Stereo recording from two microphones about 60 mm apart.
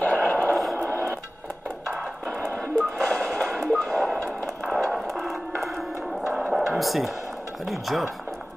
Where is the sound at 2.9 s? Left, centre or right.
Centre.